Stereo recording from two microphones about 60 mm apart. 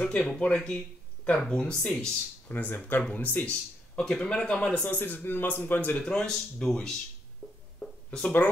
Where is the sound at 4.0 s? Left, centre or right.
Centre.